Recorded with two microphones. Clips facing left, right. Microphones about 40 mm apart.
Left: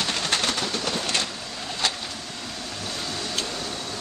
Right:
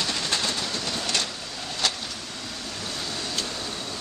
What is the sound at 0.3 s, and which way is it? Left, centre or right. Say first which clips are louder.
Train: left 2 dB; left.